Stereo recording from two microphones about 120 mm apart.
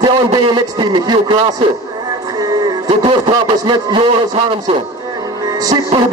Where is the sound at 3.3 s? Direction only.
35° right (ahead or behind).